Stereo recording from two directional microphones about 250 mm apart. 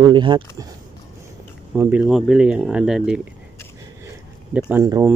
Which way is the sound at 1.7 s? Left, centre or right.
Centre.